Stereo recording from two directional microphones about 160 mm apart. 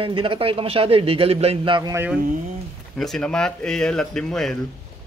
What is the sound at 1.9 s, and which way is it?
Mantra, 10° right (ahead or behind).